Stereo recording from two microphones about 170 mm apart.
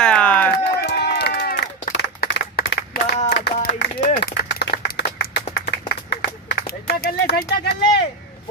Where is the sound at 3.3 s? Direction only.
85° left.